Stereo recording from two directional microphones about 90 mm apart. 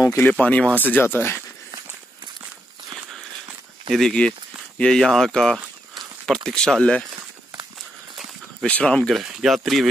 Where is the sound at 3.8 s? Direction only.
5° left (ahead or behind).